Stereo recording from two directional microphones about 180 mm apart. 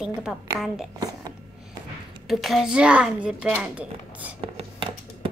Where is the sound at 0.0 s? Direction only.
5° right (ahead or behind).